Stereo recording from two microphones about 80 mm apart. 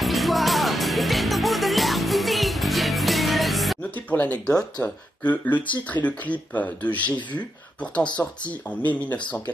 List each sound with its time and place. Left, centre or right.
0.0 s music: centre
3.9 s a sound: left
4.5 s speech: centre